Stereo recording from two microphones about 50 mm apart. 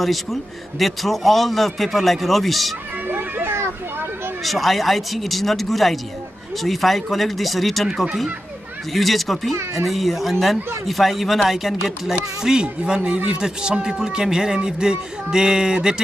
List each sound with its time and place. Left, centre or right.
0.0 s a man's voice: centre
3.1 s children playing: right
4.5 s a man's voice: centre